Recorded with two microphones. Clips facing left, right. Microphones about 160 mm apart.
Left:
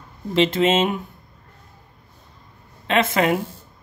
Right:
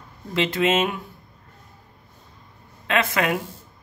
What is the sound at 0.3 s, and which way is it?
Speech, 25° left (ahead or behind).